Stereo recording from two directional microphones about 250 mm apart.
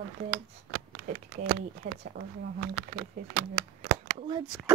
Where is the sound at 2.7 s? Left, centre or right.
Right.